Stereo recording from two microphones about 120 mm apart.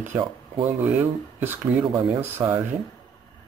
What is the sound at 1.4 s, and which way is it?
Speech, 20° right (ahead or behind).